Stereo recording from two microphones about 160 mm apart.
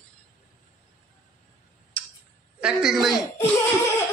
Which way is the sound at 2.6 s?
5° right (ahead or behind).